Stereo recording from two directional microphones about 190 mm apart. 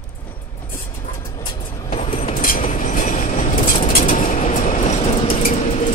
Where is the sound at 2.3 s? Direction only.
50° left (ahead or behind).